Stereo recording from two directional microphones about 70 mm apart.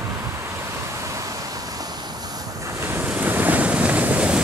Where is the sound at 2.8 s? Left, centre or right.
Right.